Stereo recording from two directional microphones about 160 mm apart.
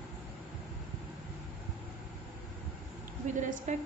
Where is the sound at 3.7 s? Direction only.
50° right (ahead or behind).